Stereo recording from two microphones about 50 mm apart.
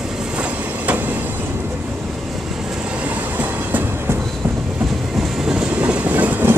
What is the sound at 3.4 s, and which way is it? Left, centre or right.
Train, right.